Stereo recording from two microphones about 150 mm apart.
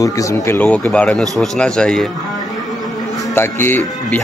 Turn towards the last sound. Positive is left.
turn(degrees=15)  # may be behind; listen again after turning